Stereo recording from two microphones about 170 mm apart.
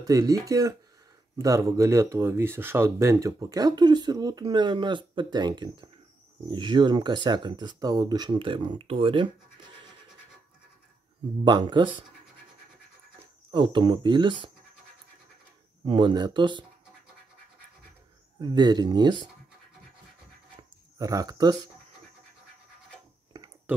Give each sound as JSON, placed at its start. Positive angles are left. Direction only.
{"t": 0.0, "sound": "speech", "side_deg": -20}
{"t": 11.4, "sound": "speech", "side_deg": -25}
{"t": 13.5, "sound": "speech", "side_deg": -30}
{"t": 15.8, "sound": "speech", "side_deg": -30}
{"t": 18.4, "sound": "speech", "side_deg": -25}
{"t": 21.0, "sound": "speech", "side_deg": -20}